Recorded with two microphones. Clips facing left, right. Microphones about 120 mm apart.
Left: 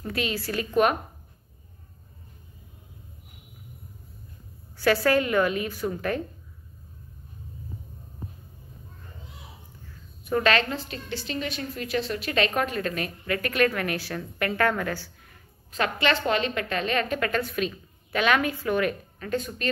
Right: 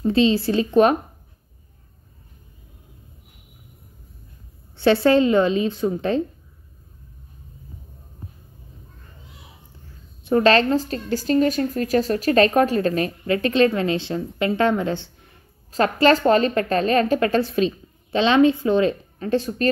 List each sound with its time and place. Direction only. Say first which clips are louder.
0.0 s a woman's voice: right 12 dB; 25° right (ahead or behind)
4.7 s a woman's voice: right 6 dB; 25° right (ahead or behind)
10.2 s a woman's voice: right 7 dB; 35° right (ahead or behind)
15.7 s a woman's voice: right 8 dB; 35° right (ahead or behind)